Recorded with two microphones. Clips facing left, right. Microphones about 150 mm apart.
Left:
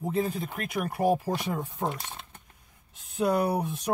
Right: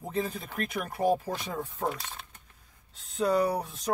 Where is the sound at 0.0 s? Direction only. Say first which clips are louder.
Left 4 dB; 15° left (ahead or behind).